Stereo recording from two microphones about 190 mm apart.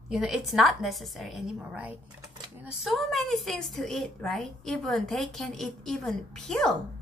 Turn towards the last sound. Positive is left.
turn(degrees=5)  # may be behind; listen again after turning